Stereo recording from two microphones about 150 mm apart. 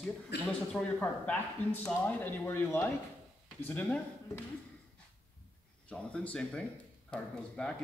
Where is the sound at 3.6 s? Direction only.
10° left (ahead or behind).